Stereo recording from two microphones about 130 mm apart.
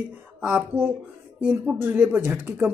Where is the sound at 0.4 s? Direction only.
10° right (ahead or behind).